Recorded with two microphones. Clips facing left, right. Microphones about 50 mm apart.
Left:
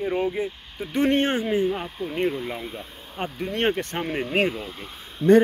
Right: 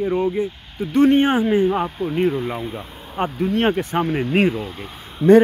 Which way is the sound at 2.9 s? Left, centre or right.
Right.